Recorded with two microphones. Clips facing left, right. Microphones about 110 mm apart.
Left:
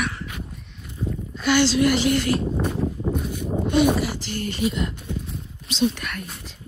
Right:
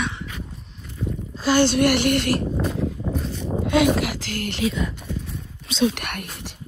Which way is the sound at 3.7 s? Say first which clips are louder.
Right 1 dB; 90° right.